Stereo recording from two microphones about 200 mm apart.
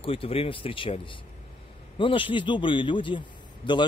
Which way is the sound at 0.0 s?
25° left (ahead or behind).